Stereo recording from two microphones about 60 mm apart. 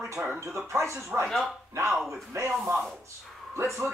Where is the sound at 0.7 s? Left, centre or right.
Right.